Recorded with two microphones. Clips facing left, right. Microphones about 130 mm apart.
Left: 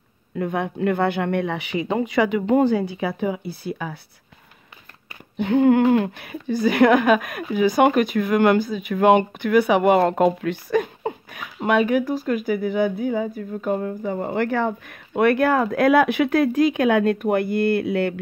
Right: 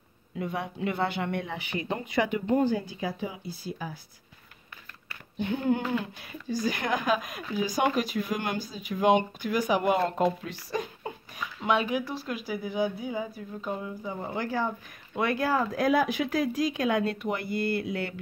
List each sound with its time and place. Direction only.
0.4 s speech: 60° left (ahead or behind)
5.4 s speech: 70° left (ahead or behind)